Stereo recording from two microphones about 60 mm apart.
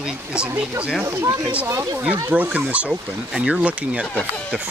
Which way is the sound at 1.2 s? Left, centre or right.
Right.